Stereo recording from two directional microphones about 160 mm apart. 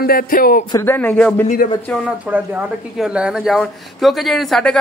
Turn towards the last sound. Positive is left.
turn(degrees=5)  # may be behind; listen again after turning